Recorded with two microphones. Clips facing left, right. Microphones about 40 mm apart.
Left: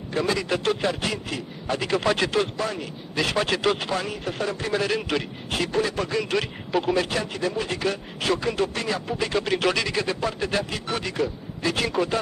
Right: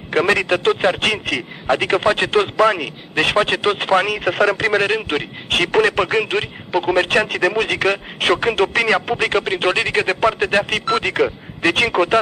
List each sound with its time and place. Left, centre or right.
0.1 s a man's voice: right
1.7 s speech: right
2.0 s speech: right
2.5 s speech: right
3.2 s speech: right
4.0 s speech: right
4.8 s speech: right
5.5 s a man's voice: right
6.2 s speech: right
6.9 s speech: right
7.2 s a man's voice: right
9.4 s speech: right